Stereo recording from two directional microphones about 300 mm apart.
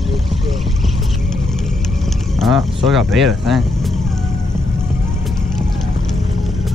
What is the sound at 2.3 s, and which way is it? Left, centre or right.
Speech, centre.